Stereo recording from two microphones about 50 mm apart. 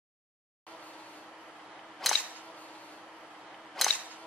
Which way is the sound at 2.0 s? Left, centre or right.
Centre.